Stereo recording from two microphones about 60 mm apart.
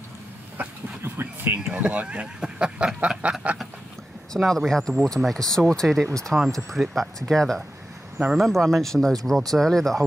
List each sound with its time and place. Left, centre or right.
0.6 s vehicle: right
1.7 s speech: centre
4.4 s speech: centre